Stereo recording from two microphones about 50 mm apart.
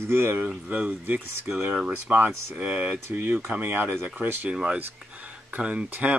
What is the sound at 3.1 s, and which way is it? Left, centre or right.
Speech, right.